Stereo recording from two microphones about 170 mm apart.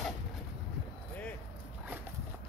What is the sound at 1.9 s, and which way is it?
Walk, 10° right (ahead or behind).